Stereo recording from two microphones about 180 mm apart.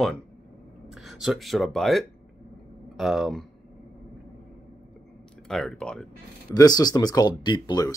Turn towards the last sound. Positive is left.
turn(degrees=25)  # may be behind; listen again after turning